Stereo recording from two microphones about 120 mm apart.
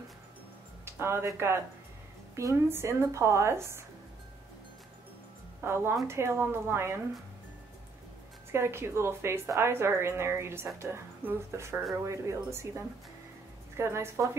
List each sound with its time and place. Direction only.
0.8 s a woman's voice: 20° right (ahead or behind)
5.6 s a woman's voice: 20° right (ahead or behind)
8.5 s a woman's voice: 20° right (ahead or behind)
13.7 s a woman's voice: 20° right (ahead or behind)